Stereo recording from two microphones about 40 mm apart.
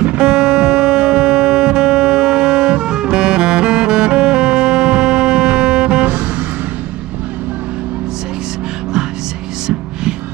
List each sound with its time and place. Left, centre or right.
0.2 s music: centre